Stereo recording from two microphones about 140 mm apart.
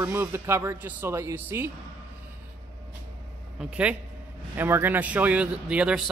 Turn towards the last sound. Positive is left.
turn(degrees=-5)  # may be behind; listen again after turning